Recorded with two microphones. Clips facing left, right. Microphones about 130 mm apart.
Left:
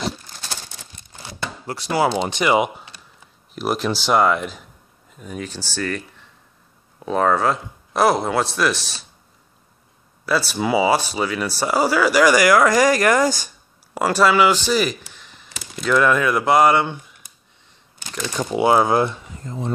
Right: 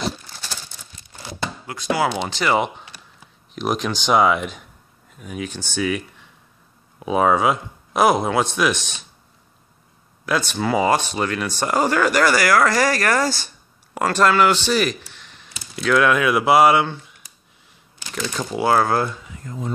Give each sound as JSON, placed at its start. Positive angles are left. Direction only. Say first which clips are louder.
{"t": 1.7, "sound": "speech", "louder": "left 2 dB", "side_deg": 35}
{"t": 2.2, "sound": "speech", "louder": "left 2 dB", "side_deg": 15}
{"t": 5.8, "sound": "speech", "louder": "right 3 dB", "side_deg": -10}
{"t": 10.2, "sound": "speech", "louder": "left 1 dB", "side_deg": 5}
{"t": 18.1, "sound": "speech", "louder": "left 2 dB", "side_deg": 15}